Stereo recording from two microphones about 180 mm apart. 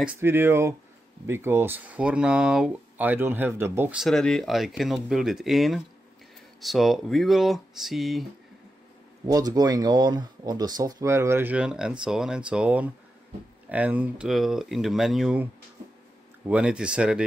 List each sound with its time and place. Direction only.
0.0 s speech: 10° right (ahead or behind)
9.2 s speech: 20° right (ahead or behind); by 15.4 s centre (ahead or behind)
16.4 s speech: 5° right (ahead or behind)